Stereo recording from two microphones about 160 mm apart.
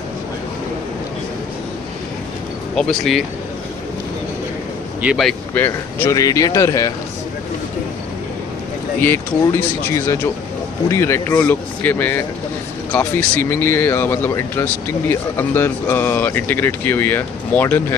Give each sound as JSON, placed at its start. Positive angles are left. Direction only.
{"t": 2.7, "sound": "speech", "side_deg": 0}
{"t": 5.0, "sound": "speech", "side_deg": 0}
{"t": 5.5, "sound": "speech", "side_deg": 10}
{"t": 9.0, "sound": "speech", "side_deg": 15}